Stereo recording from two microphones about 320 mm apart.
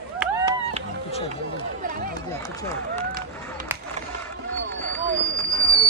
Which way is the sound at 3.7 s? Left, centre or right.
Centre.